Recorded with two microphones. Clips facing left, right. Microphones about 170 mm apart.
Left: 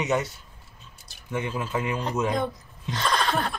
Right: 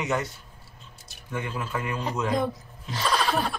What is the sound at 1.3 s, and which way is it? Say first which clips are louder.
Speech: left 3 dB; 20° left (ahead or behind).